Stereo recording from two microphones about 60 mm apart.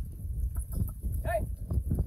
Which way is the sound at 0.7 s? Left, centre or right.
Centre.